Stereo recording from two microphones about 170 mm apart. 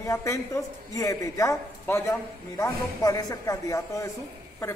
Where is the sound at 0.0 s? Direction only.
20° left (ahead or behind).